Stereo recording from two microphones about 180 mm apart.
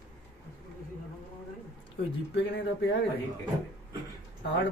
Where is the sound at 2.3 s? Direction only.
75° left (ahead or behind).